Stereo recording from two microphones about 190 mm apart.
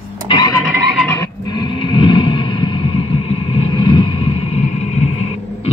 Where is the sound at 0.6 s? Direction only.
Centre (ahead or behind).